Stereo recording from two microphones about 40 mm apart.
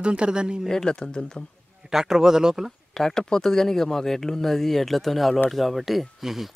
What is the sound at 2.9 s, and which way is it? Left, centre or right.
Speech, centre.